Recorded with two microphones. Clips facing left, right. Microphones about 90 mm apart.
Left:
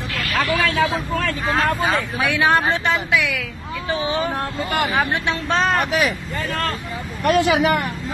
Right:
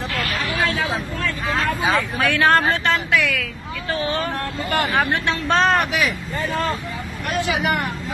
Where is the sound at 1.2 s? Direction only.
75° left (ahead or behind).